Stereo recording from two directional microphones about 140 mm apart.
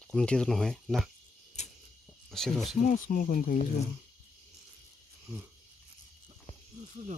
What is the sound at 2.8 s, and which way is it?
Speech, 80° left.